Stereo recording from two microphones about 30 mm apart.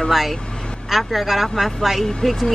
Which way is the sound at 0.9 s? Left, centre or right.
Centre.